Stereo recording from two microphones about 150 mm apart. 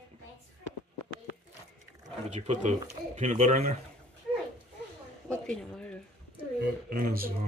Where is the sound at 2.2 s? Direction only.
50° right (ahead or behind).